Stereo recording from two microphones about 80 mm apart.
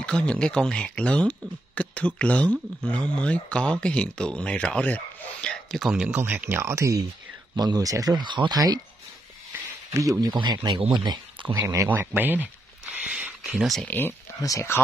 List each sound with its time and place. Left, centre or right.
0.0 s speech: centre
5.8 s speech: centre
6.1 s speech: right
7.5 s speech: right
8.2 s speech: right
8.5 s speech: right
10.2 s speech: right
11.6 s speech: right
11.9 s speech: right
13.6 s speech: centre
13.8 s speech: left
14.4 s speech: left